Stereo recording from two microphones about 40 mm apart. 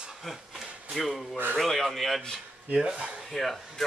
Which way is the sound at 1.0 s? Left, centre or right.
Centre.